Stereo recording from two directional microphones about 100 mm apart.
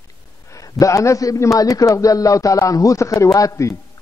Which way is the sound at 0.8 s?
30° left (ahead or behind).